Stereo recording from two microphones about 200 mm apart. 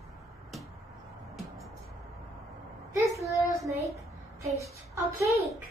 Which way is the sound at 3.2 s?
15° left (ahead or behind).